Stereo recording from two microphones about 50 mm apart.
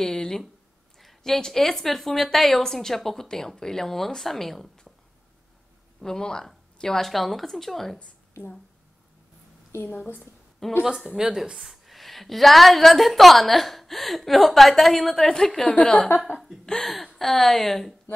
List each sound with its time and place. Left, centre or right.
0.0 s a woman's voice: centre
5.9 s a woman's voice: centre
9.8 s a woman's voice: left
10.6 s a woman's voice: centre
11.1 s a woman's voice: centre